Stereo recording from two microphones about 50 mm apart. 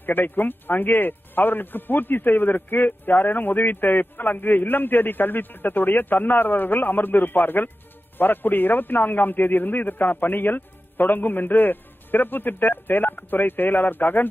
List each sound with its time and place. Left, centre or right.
0.0 s speech: left